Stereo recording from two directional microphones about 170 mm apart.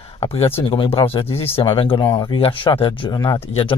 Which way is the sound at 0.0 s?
35° left (ahead or behind).